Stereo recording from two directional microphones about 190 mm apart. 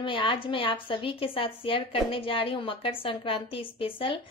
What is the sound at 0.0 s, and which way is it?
A woman's voice, 25° left (ahead or behind).